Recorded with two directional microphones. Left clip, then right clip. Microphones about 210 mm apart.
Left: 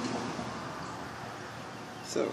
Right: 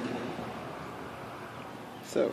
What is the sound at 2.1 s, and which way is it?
Speech, 20° right (ahead or behind).